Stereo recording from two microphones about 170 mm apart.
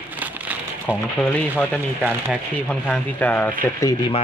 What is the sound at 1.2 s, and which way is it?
Speech, 5° left (ahead or behind).